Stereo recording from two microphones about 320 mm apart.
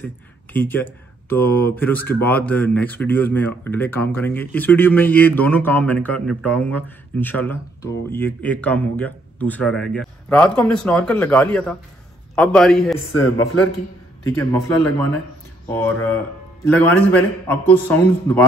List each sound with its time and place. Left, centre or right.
0.0 s speech: centre
13.2 s a man's voice: left
15.7 s speech: centre